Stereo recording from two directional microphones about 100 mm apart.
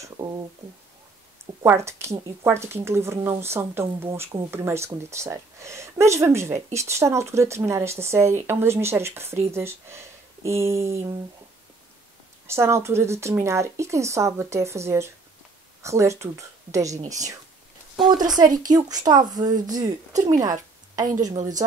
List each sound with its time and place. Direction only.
0.2 s a woman's voice: 30° right (ahead or behind)
1.6 s a woman's voice: 25° right (ahead or behind)
12.4 s a woman's voice: 25° right (ahead or behind)
18.4 s a woman's voice: 40° right (ahead or behind)